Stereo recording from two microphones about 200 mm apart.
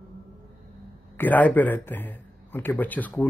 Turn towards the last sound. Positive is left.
turn(degrees=10)  # may be behind; listen again after turning